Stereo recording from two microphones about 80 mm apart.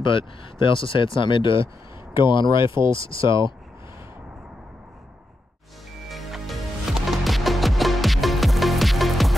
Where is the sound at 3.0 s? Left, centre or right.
Left.